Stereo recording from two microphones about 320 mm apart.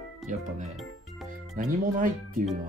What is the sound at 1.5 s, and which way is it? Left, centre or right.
Speech, right.